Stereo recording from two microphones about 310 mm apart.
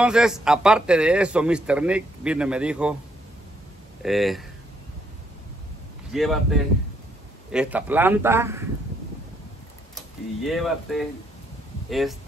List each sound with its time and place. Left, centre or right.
0.0 s a man's voice: centre
4.0 s a man's voice: centre
6.1 s a man's voice: centre
9.9 s a man's voice: centre